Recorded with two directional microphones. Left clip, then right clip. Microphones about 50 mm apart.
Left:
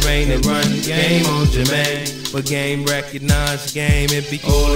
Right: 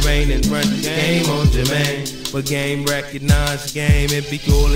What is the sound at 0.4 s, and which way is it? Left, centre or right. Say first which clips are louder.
Music: left 2 dB; left.